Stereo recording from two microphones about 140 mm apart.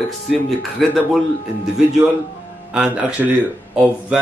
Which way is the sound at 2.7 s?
10° right (ahead or behind).